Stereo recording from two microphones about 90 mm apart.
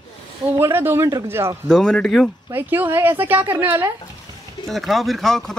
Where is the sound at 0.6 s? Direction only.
25° right (ahead or behind).